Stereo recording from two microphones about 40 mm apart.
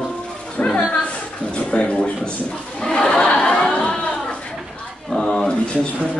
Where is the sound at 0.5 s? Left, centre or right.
Left.